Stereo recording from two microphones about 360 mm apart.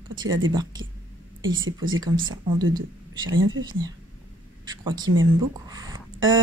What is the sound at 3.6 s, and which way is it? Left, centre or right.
Speech, centre.